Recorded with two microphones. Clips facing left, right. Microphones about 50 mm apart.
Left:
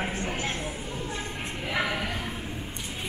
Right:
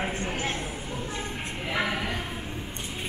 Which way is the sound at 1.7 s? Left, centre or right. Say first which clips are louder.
Even; centre.